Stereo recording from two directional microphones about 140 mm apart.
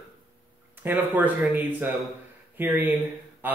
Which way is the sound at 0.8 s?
15° right (ahead or behind).